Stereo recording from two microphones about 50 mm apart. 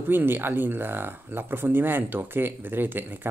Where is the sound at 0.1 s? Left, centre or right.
Right.